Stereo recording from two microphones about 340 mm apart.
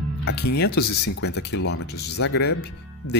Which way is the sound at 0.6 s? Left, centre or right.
Left.